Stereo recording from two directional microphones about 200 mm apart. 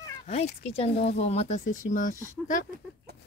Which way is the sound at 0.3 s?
35° left (ahead or behind).